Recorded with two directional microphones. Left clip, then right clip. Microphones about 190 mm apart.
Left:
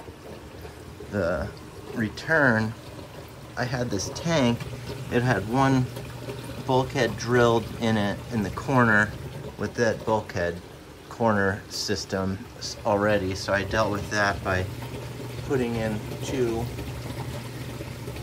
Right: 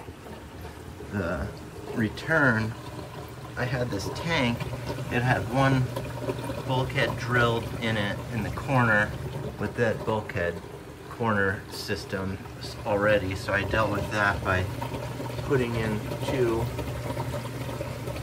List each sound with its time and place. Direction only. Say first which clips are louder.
1.1 s speech: left 5 dB; 5° left (ahead or behind)
4.8 s speech: left 2 dB; 5° left (ahead or behind)
6.7 s speech: left 4 dB; 15° left (ahead or behind)